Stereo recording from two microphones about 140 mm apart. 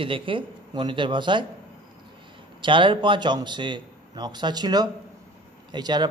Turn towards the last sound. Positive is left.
turn(degrees=-30)  # may be behind; listen again after turning